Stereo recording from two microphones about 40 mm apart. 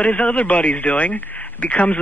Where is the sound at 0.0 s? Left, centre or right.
Left.